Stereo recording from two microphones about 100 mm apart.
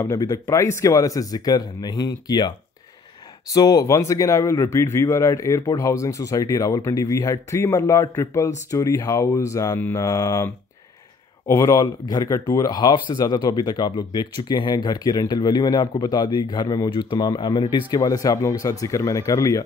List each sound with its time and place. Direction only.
0.0 s speech: 35° left (ahead or behind)